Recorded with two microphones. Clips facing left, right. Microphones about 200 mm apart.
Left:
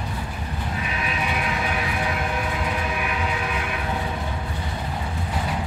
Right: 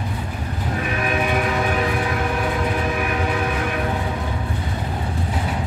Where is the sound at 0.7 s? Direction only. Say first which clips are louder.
Right 7 dB; 55° right (ahead or behind).